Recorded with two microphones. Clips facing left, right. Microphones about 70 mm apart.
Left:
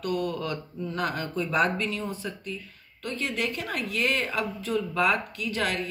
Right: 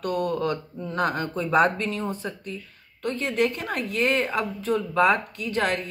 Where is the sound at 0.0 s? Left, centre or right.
Right.